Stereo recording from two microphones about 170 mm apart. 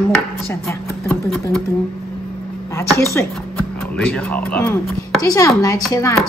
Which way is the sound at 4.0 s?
5° left (ahead or behind).